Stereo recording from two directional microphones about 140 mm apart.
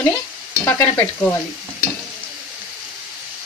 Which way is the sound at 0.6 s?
20° left (ahead or behind).